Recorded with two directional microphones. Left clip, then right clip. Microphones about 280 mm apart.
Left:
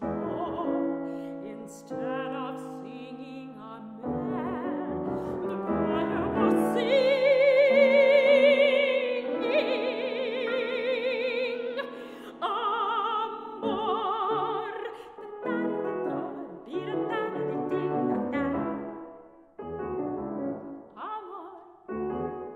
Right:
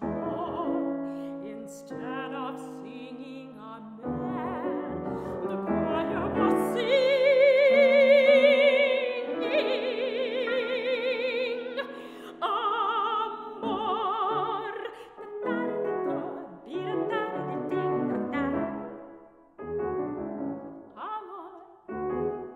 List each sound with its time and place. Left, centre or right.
0.3 s music: centre
4.0 s music: centre
12.4 s opera: centre
15.4 s music: centre